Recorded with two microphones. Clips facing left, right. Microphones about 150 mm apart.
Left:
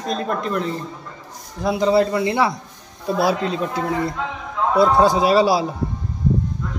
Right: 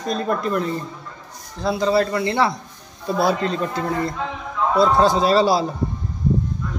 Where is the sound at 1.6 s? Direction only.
20° left (ahead or behind).